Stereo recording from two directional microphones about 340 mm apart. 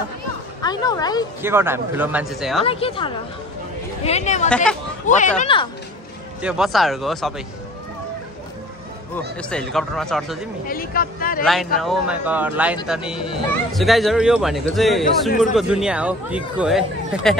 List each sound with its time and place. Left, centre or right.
0.6 s speech: centre
1.4 s speech: centre
2.6 s a woman's voice: centre
6.4 s speech: centre
9.4 s speech: centre
10.7 s speech: left
11.4 s speech: centre